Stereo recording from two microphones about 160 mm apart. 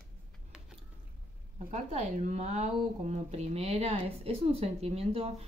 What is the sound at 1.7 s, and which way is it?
Speech, 45° right (ahead or behind).